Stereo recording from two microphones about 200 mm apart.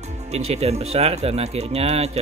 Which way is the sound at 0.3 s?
30° right (ahead or behind).